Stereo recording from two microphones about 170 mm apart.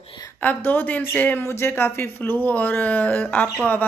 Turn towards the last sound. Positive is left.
turn(degrees=10)  # may be behind; listen again after turning